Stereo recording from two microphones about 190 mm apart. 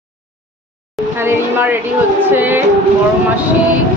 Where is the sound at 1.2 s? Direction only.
10° right (ahead or behind).